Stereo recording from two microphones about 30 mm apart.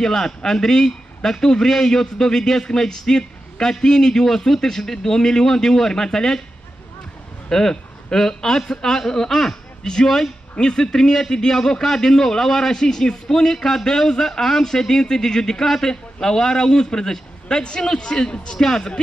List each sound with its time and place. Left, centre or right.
0.0 s a man's voice: centre
7.4 s a man's voice: centre
10.6 s a man's voice: left; by 12.7 s centre
12.7 s a man's voice: centre